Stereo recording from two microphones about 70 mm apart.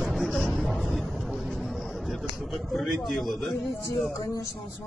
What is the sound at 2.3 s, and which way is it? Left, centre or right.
A man's voice, centre.